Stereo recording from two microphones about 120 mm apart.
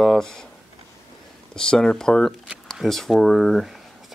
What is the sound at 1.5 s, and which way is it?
Speech, 5° left (ahead or behind).